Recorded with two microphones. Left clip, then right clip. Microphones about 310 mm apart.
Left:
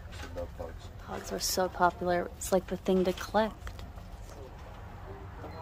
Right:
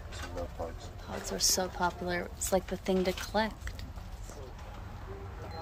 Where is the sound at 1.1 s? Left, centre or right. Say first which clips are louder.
Right 3 dB; centre.